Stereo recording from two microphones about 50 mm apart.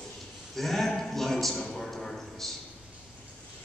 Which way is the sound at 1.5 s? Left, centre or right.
Centre.